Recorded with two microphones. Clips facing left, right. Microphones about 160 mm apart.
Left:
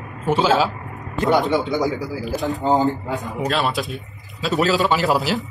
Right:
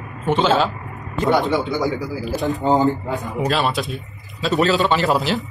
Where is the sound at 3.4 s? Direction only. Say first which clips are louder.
Right 1 dB; centre (ahead or behind).